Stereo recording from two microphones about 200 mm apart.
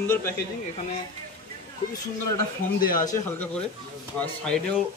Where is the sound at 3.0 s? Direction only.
15° left (ahead or behind).